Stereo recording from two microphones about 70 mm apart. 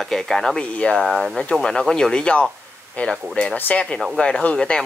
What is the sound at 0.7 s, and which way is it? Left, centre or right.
Speech, centre.